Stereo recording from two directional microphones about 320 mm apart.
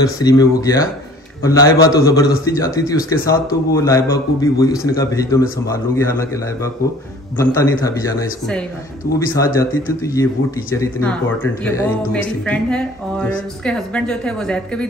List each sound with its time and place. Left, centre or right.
0.0 s a man's voice: centre